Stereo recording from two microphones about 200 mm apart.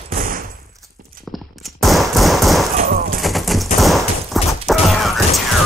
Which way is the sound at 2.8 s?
45° right (ahead or behind).